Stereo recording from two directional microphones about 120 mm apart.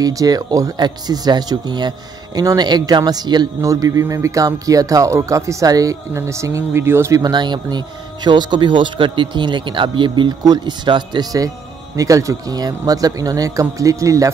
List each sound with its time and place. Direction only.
0.0 s speech: 30° right (ahead or behind)